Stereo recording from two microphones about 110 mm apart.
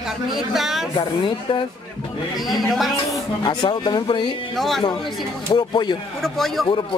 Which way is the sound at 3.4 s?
40° left (ahead or behind).